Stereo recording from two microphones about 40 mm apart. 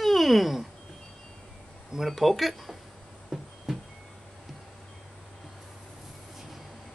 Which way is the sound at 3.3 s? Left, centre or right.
Centre.